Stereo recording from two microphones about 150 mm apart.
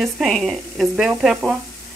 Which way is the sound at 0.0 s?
Centre (ahead or behind).